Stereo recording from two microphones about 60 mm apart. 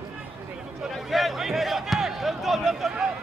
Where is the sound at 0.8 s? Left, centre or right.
Centre.